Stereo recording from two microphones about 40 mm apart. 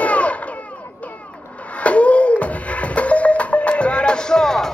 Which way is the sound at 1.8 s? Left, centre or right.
Left.